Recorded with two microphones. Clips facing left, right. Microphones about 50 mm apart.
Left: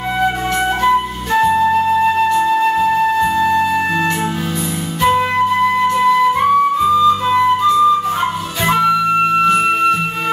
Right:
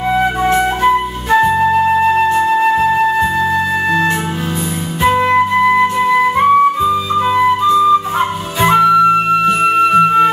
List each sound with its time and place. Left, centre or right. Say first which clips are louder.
0.2 s flute: even; centre
3.2 s music: even; centre
5.0 s flute: right 2 dB; centre
9.5 s music: right 2 dB; centre